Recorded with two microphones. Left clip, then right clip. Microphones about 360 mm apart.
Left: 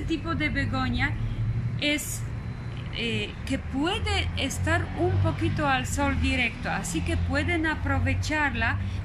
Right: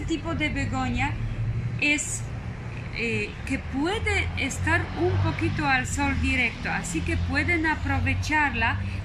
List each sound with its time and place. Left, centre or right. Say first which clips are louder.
0.1 s a woman's voice: even; centre